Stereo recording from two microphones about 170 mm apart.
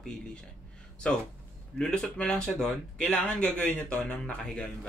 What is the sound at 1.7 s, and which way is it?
Speech, 5° left (ahead or behind).